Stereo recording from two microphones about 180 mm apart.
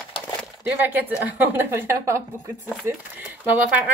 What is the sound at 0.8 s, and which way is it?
A woman's voice, 10° right (ahead or behind).